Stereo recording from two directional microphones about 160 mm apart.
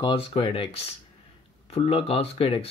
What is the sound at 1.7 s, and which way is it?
Speech, 40° left (ahead or behind).